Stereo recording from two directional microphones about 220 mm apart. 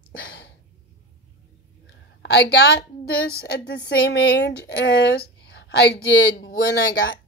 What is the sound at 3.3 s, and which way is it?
Speech, 50° left (ahead or behind).